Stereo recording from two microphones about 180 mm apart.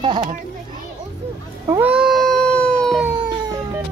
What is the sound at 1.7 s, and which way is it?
Cat, 10° right (ahead or behind).